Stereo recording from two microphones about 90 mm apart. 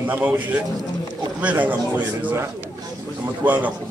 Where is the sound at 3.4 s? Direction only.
20° right (ahead or behind).